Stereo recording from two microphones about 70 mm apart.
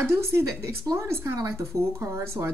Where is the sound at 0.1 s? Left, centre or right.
Right.